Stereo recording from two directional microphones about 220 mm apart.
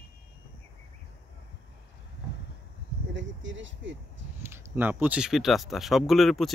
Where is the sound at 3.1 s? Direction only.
55° right (ahead or behind).